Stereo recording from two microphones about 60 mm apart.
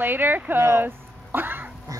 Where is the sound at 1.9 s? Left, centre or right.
Right.